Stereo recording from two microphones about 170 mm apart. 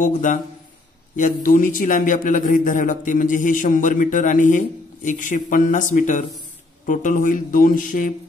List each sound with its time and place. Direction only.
0.0 s a man's voice: 50° left (ahead or behind)